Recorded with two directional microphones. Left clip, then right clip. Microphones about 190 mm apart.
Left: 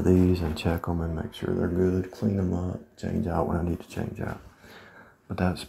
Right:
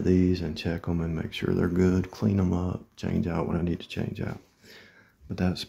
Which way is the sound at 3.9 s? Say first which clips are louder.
Even; 35° right (ahead or behind).